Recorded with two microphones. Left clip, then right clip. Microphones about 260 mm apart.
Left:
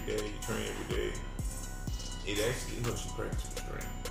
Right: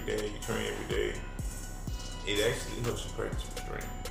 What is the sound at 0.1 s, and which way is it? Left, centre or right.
Music, centre.